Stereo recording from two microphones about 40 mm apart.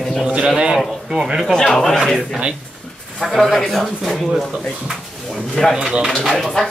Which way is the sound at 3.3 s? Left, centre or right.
Centre.